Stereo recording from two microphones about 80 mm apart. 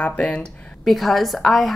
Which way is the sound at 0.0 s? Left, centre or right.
Centre.